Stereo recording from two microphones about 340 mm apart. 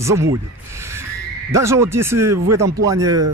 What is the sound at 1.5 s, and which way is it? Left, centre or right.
Speech, centre.